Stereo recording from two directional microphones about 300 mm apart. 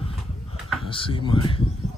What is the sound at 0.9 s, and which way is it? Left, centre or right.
Speech, centre.